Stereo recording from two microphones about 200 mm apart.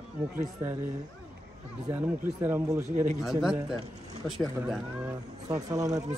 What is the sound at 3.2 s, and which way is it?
Speech, centre (ahead or behind).